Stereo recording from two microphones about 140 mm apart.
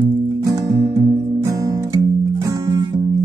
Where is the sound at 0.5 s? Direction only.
25° right (ahead or behind).